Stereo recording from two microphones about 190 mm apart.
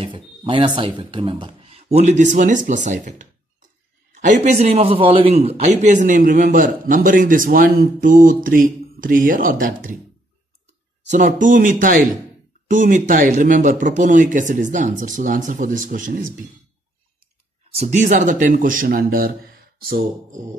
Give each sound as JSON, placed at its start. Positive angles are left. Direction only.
{"t": 0.0, "sound": "a man's voice", "side_deg": -25}
{"t": 11.1, "sound": "a man's voice", "side_deg": -40}
{"t": 17.7, "sound": "a man's voice", "side_deg": -40}